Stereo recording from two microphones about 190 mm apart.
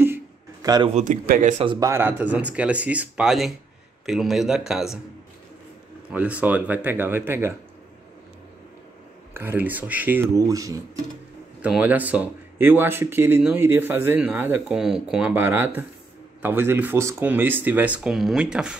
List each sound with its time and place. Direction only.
0.0 s a sound: 15° right (ahead or behind)
0.9 s a man's voice: 45° right (ahead or behind)
1.6 s speech: 25° right (ahead or behind)
1.9 s speech: 10° right (ahead or behind)
6.1 s speech: 10° right (ahead or behind)
9.3 s speech: 10° right (ahead or behind)
11.6 s speech: 5° right (ahead or behind)